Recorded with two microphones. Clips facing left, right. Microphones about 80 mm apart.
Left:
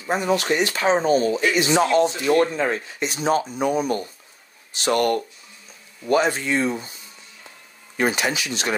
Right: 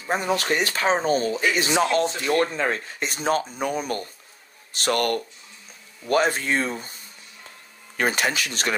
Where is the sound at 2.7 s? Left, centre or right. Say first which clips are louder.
Left 2 dB; right.